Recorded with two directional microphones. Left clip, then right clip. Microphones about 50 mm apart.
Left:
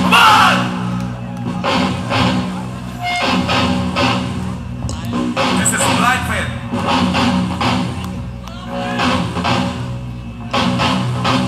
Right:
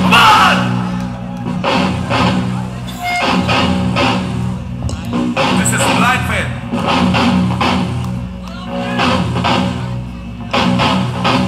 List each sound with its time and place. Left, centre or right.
0.0 s music: right
1.6 s music: right
8.9 s music: right